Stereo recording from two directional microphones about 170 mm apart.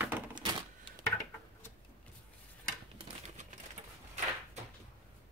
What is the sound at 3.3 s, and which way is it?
Pigeon, 45° right (ahead or behind).